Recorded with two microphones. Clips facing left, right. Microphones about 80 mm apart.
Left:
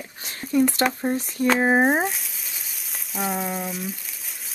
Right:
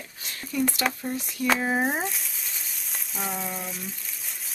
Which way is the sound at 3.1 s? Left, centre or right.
Centre.